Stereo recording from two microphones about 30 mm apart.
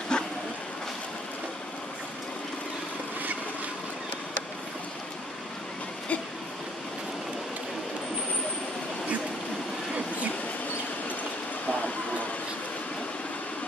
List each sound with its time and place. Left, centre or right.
0.1 s vehicle: left